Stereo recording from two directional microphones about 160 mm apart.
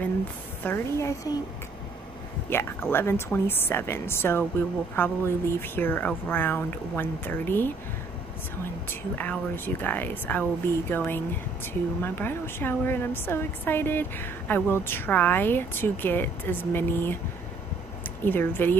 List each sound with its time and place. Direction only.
0.7 s speech: 15° left (ahead or behind)
2.5 s speech: 15° left (ahead or behind)
9.2 s speech: 10° left (ahead or behind)
18.2 s speech: 15° left (ahead or behind)